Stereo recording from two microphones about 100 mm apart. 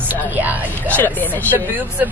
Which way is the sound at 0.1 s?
15° right (ahead or behind).